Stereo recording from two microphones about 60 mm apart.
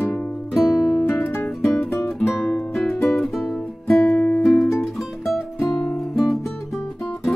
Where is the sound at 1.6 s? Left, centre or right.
Centre.